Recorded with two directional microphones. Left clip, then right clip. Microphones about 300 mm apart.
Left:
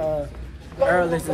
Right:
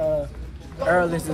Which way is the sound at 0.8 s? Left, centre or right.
Centre.